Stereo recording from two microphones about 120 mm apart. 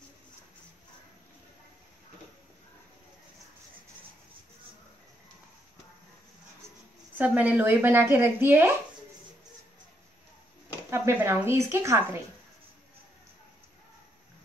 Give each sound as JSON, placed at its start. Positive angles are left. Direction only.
{"t": 7.2, "sound": "a woman's voice", "side_deg": -15}
{"t": 10.9, "sound": "speech", "side_deg": -20}